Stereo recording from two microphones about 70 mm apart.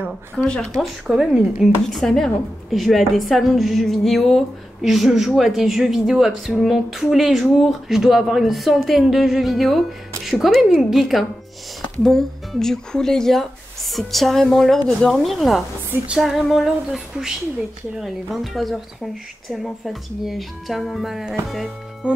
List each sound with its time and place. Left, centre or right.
0.4 s speech: centre
1.0 s a woman's voice: centre
1.9 s a woman's voice: centre
22.0 s a woman's voice: centre